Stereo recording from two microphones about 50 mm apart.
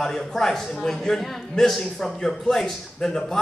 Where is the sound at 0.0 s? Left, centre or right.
Centre.